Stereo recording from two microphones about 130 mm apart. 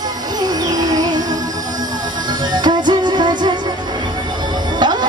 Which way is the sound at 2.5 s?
35° right (ahead or behind).